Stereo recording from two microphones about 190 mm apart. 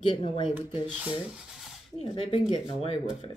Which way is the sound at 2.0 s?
25° left (ahead or behind).